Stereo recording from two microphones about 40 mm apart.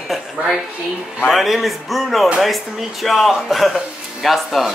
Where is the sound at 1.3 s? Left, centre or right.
Centre.